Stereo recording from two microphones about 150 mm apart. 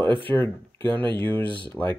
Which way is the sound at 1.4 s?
35° right (ahead or behind).